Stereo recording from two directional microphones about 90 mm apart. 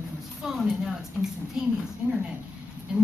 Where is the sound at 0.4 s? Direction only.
5° right (ahead or behind).